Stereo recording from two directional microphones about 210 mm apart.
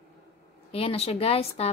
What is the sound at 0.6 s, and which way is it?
Speech, 25° left (ahead or behind).